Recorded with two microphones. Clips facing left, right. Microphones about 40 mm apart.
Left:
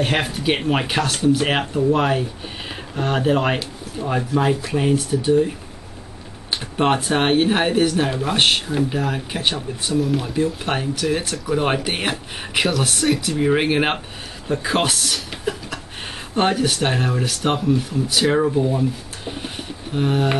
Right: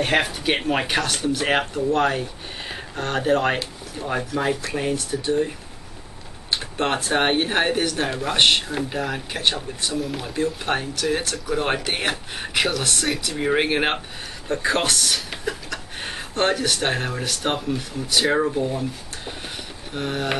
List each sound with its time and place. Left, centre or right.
0.0 s speech: centre
1.7 s speech: centre
5.1 s speech: centre
6.5 s speech: centre
7.1 s speech: centre
9.9 s speech: centre
16.3 s speech: centre
18.6 s speech: centre
19.2 s a sound: centre
20.0 s speech: centre